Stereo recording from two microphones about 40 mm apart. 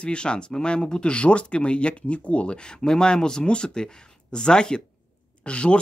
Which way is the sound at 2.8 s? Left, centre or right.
Centre.